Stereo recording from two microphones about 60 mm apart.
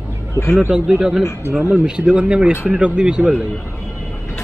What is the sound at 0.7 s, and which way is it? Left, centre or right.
Speech, centre.